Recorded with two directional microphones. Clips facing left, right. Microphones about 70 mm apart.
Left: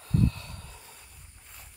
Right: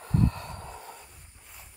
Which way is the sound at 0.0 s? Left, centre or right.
Right.